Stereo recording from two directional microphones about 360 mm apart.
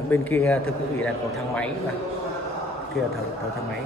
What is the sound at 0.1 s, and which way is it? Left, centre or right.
A man's voice, centre.